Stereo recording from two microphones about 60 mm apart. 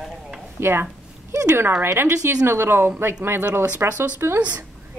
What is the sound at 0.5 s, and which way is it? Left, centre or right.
Speech, right.